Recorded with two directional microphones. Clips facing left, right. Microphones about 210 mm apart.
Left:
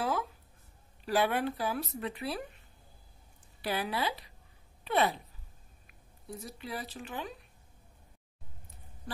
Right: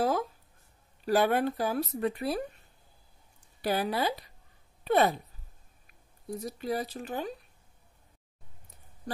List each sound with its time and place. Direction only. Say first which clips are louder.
0.0 s a sound: right 5 dB; 40° right (ahead or behind)
1.0 s speech: right 4 dB; 45° right (ahead or behind)
3.6 s speech: right 4 dB; 45° right (ahead or behind)